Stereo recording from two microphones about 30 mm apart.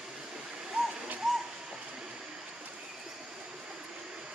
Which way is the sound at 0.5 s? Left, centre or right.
Right.